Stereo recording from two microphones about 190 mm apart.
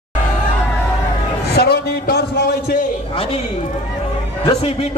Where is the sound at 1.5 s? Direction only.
55° left (ahead or behind).